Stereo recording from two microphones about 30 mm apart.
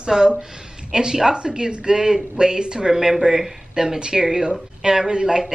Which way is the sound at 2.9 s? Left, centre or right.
Centre.